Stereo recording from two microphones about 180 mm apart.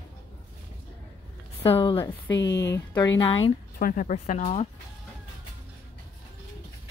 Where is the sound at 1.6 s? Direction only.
30° left (ahead or behind).